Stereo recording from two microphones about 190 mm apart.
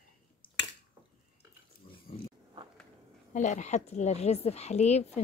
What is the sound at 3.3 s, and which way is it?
A woman's voice, 40° left (ahead or behind).